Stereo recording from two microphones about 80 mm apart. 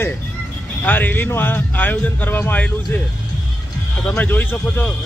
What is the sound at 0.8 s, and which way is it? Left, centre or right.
Speech, left.